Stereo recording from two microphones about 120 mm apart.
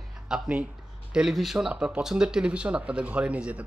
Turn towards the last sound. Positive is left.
turn(degrees=-10)  # may be behind; listen again after turning